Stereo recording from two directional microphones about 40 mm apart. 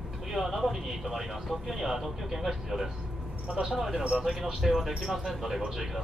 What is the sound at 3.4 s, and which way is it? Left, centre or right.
Speech, centre.